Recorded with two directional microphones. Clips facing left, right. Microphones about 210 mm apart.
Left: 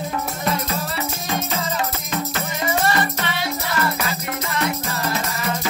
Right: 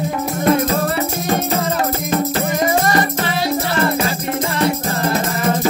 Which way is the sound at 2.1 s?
45° right (ahead or behind).